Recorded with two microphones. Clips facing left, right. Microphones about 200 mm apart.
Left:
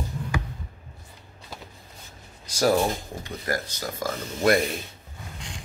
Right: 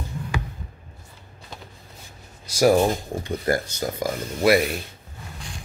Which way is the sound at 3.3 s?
25° right (ahead or behind).